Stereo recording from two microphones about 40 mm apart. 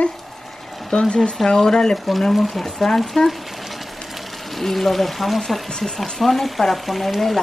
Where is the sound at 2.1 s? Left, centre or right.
Centre.